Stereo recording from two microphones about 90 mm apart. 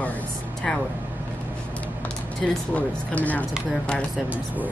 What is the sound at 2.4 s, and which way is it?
Speech, 15° left (ahead or behind).